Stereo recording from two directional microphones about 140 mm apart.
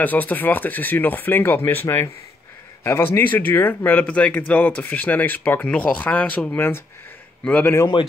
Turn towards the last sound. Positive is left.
turn(degrees=10)  # may be behind; listen again after turning